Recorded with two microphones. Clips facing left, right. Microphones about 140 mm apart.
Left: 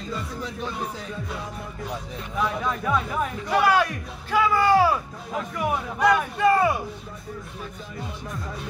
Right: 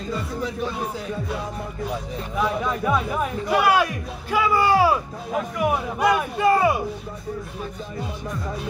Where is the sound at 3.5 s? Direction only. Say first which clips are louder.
Right 1 dB; 10° right (ahead or behind).